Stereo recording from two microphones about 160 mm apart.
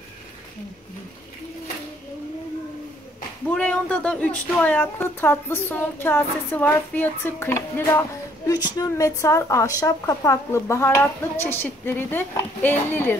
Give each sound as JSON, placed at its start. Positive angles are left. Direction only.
{"t": 3.4, "sound": "speech", "side_deg": 10}